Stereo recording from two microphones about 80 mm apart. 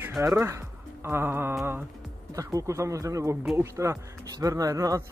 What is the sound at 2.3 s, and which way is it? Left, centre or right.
Speech, right.